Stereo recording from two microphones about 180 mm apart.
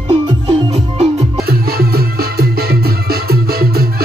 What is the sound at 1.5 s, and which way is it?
Music, 60° right (ahead or behind).